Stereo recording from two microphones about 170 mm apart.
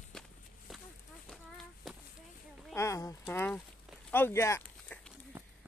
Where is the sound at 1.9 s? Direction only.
5° right (ahead or behind).